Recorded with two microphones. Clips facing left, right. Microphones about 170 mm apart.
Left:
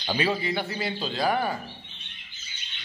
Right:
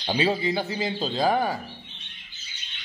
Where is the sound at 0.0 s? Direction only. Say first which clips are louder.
Right 3 dB; 25° right (ahead or behind).